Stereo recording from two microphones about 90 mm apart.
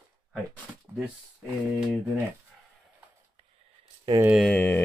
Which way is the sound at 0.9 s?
25° right (ahead or behind).